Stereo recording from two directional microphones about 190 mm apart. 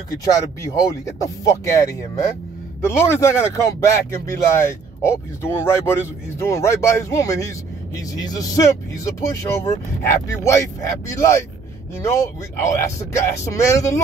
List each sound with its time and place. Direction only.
0.2 s speech: 20° left (ahead or behind)